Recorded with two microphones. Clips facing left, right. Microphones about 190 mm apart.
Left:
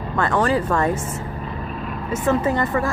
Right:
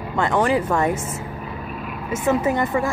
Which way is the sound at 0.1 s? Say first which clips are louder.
Even; 15° right (ahead or behind).